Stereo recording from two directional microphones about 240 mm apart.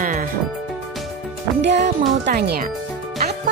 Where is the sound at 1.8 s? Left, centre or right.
Right.